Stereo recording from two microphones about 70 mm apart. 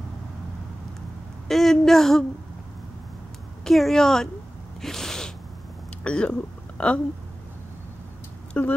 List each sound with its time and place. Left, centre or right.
1.5 s a woman's voice: centre
3.6 s speech: centre
4.8 s sneeze: centre
6.0 s speech: centre
8.6 s speech: left